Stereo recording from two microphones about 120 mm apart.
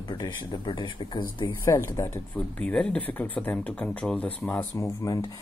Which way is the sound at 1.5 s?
20° left (ahead or behind).